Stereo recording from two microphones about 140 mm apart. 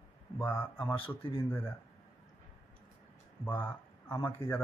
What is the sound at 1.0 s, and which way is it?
Speech, 40° left (ahead or behind).